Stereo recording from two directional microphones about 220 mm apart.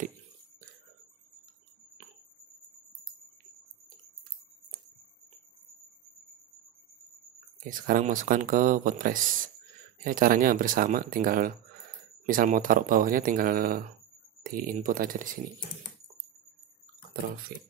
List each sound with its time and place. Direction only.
7.6 s speech: 35° right (ahead or behind)